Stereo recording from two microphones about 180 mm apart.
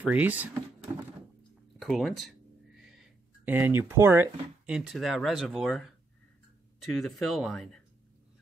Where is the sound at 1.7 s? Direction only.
Centre (ahead or behind).